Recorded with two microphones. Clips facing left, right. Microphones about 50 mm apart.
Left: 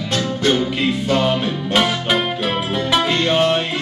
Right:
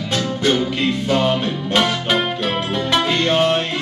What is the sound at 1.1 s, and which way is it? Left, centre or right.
Music, centre.